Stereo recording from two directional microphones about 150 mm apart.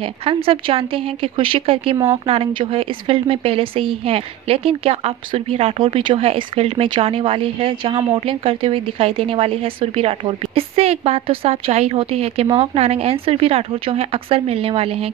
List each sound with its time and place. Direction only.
0.0 s a woman's voice: 35° right (ahead or behind)